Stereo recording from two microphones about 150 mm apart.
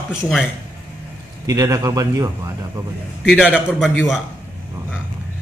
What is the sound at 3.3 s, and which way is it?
Speech, 5° right (ahead or behind).